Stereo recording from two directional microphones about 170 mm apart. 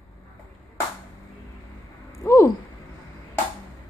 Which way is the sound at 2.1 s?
15° left (ahead or behind).